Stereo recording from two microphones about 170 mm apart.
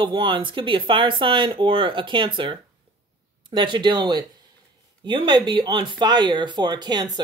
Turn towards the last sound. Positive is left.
turn(degrees=-25)  # may be behind; listen again after turning